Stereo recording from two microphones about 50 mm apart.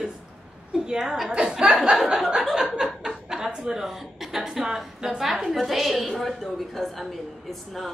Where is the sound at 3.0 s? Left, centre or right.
Centre.